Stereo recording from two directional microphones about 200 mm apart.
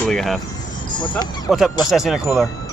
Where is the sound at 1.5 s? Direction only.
Centre (ahead or behind).